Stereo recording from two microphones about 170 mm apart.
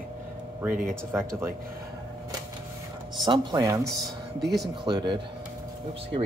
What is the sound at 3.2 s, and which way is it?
Speech, 25° right (ahead or behind).